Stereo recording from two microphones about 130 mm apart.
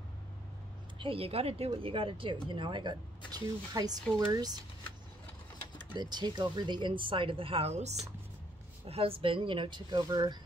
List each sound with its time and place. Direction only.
0.9 s speech: 45° right (ahead or behind)
5.8 s speech: 35° right (ahead or behind)